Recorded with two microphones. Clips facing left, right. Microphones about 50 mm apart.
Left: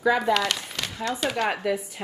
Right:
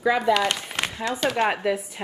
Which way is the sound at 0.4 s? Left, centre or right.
Right.